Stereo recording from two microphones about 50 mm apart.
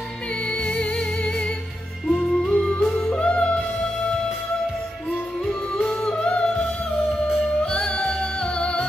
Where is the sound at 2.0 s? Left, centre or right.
Centre.